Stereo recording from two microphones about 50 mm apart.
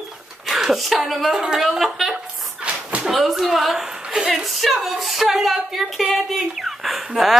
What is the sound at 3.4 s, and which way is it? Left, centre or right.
A woman's voice, centre.